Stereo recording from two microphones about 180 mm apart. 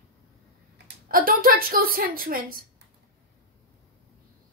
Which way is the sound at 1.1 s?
55° right (ahead or behind).